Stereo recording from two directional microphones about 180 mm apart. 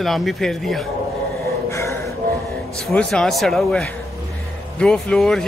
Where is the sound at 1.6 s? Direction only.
15° left (ahead or behind).